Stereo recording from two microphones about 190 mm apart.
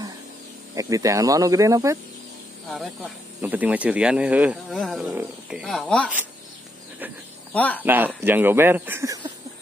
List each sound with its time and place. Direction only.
0.7 s speech: 15° right (ahead or behind)
2.7 s speech: centre (ahead or behind)
7.5 s speech: 10° left (ahead or behind)
7.8 s speech: 10° right (ahead or behind)